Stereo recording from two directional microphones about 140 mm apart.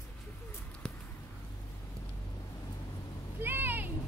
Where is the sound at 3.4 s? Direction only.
15° right (ahead or behind).